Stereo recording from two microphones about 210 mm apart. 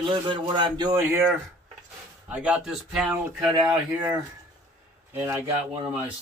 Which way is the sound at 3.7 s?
20° right (ahead or behind).